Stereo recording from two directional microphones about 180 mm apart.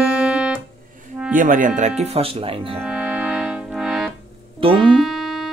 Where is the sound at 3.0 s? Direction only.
10° right (ahead or behind).